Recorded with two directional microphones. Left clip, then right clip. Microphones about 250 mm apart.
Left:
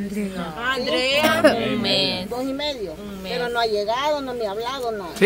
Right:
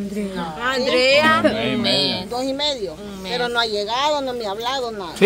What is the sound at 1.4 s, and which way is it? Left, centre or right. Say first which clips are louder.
Speech: left 1 dB; left.